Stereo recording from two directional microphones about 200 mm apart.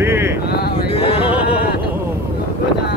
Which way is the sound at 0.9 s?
30° left (ahead or behind).